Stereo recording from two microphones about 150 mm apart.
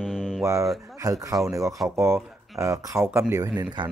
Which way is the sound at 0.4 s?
20° right (ahead or behind).